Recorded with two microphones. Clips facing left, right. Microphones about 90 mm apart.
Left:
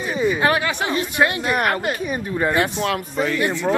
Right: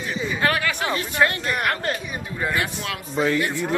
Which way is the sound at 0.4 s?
20° left (ahead or behind).